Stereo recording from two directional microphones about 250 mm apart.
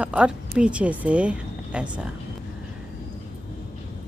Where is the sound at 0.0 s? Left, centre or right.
Centre.